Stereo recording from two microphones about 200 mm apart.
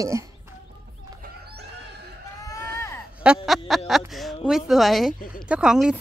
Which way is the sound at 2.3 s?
15° left (ahead or behind).